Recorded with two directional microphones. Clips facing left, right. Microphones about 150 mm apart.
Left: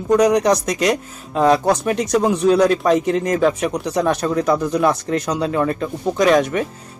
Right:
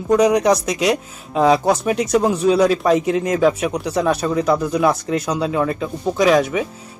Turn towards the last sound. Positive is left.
turn(degrees=-5)  # may be behind; listen again after turning